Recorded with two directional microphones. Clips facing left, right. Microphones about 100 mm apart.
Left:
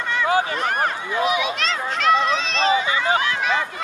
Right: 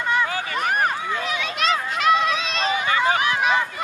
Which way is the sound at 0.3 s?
20° left (ahead or behind).